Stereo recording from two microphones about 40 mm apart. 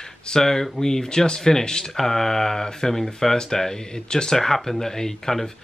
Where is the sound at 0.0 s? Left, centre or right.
Centre.